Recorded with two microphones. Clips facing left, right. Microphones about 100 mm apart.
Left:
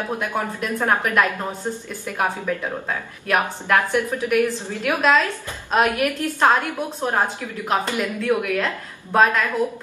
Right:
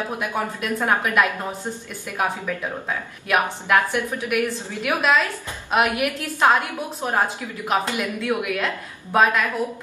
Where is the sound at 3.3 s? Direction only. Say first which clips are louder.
Even; 10° right (ahead or behind).